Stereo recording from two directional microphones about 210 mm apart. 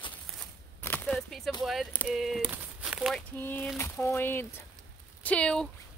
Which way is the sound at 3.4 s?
10° left (ahead or behind).